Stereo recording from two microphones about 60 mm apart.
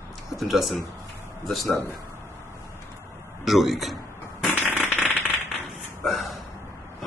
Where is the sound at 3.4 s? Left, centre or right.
Centre.